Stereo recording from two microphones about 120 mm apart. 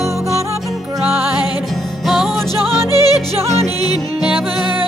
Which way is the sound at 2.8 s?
30° left (ahead or behind).